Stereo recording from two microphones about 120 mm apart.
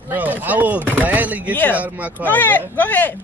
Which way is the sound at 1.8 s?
15° right (ahead or behind).